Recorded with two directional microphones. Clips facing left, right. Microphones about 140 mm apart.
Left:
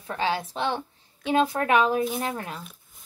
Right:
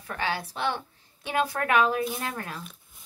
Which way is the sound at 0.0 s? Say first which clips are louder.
Left 4 dB; 20° left (ahead or behind).